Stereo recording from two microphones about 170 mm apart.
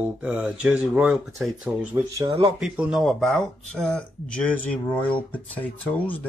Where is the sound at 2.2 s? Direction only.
30° right (ahead or behind).